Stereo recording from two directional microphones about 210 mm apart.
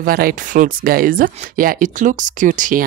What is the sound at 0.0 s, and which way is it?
Speech, 45° right (ahead or behind).